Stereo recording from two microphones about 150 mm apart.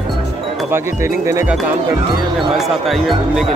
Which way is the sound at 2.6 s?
Centre (ahead or behind).